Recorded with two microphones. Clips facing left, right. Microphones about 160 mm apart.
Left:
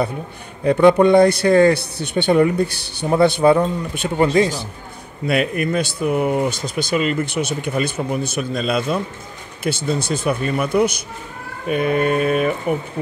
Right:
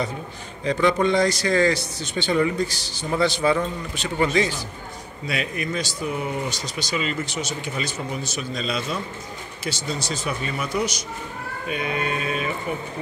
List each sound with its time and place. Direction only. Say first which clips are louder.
0.7 s speech: left 8 dB; 60° left (ahead or behind)